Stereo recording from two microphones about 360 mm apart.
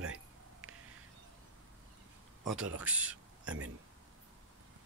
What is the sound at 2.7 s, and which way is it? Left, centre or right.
Speech, centre.